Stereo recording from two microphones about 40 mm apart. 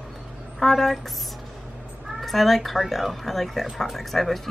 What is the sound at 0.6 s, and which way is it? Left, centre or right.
Speech, centre.